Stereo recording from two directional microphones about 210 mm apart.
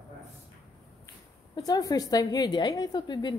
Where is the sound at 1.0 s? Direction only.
20° left (ahead or behind).